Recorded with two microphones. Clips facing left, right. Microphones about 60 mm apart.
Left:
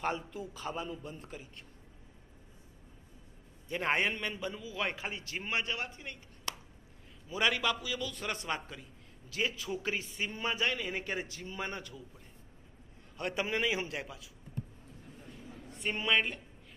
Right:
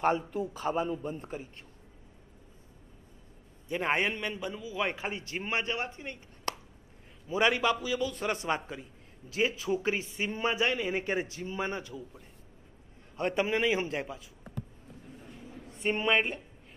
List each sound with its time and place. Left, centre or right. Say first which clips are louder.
0.0 s a man's voice: right 7 dB; right
1.1 s a man's voice: right 7 dB; right
3.6 s a man's voice: right 2 dB; centre
6.5 s a sound: right 6 dB; right
7.2 s a man's voice: right 5 dB; right
13.1 s a man's voice: right 6 dB; right
13.4 s a man's voice: right 4 dB; centre
13.7 s a man's voice: right 5 dB; right
15.9 s a man's voice: right 3 dB; right